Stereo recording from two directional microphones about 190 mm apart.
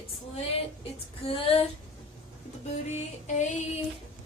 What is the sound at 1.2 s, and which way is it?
Music, 30° left (ahead or behind).